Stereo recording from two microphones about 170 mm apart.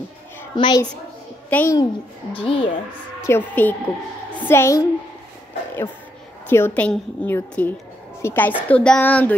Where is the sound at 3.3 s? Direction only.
15° left (ahead or behind).